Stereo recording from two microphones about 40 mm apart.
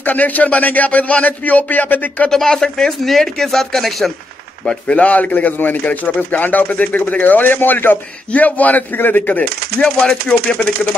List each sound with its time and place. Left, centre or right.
0.0 s speech: left
2.3 s speech: centre
4.9 s speech: left
8.3 s speech: left
9.4 s speech: centre